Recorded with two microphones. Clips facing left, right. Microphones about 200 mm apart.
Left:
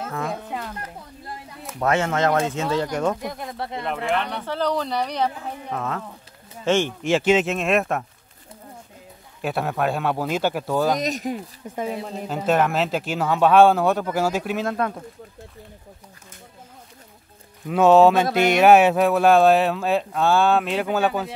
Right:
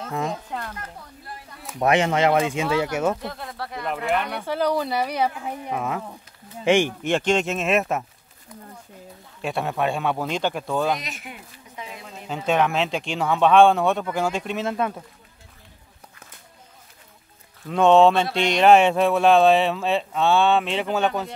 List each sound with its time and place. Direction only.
0.5 s speech: 5° left (ahead or behind)
1.8 s speech: 15° right (ahead or behind)
3.2 s speech: 15° left (ahead or behind)
3.8 s speech: 5° right (ahead or behind)
7.0 s speech: 5° left (ahead or behind)
9.4 s speech: centre (ahead or behind)
11.0 s speech: 40° left (ahead or behind)
12.4 s speech: 5° left (ahead or behind)
17.6 s speech: 5° left (ahead or behind)